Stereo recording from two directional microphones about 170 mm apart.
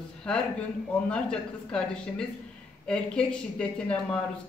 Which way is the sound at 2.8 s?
5° left (ahead or behind).